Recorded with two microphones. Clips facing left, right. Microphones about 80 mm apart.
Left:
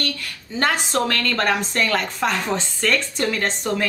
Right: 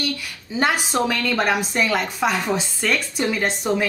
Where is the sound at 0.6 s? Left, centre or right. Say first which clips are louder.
Right 1 dB; centre.